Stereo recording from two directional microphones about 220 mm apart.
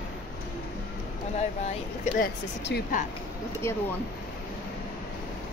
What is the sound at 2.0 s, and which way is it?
Speech, 45° left (ahead or behind).